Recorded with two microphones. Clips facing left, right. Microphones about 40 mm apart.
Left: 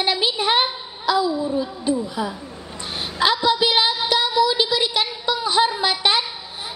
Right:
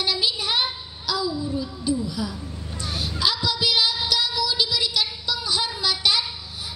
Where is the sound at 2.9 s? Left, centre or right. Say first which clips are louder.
Left 5 dB; left.